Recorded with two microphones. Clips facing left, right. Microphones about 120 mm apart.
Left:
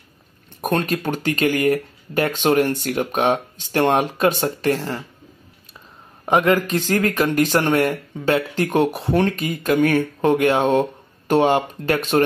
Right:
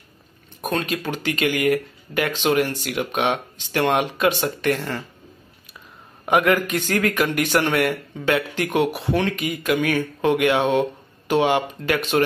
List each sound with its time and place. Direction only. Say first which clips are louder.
0.6 s speech: left 3 dB; 50° left (ahead or behind); by 5.0 s 30° left (ahead or behind)
6.2 s speech: left 1 dB; 30° left (ahead or behind)